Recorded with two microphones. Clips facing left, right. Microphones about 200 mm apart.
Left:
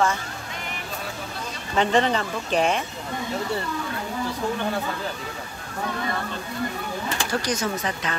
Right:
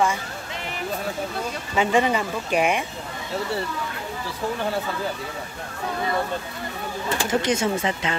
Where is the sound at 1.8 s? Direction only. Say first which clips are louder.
Even; 10° right (ahead or behind).